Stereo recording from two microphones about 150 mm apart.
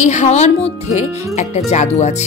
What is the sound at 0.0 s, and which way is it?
Speech, 50° left (ahead or behind).